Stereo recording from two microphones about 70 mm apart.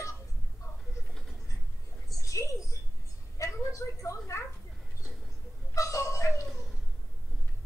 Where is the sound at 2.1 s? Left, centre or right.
Left.